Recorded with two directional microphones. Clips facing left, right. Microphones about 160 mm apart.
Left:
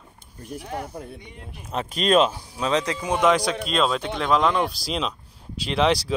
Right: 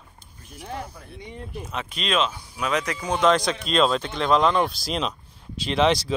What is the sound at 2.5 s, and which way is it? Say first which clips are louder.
Speech: left 1 dB; 25° left (ahead or behind).